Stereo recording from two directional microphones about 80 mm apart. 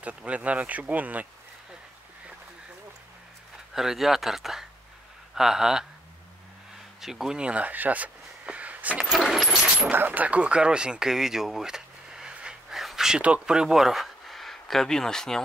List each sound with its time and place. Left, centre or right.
0.0 s speech: centre
3.7 s speech: centre
7.0 s speech: centre
9.1 s keys jangling: centre
9.9 s speech: right; by 15.4 s centre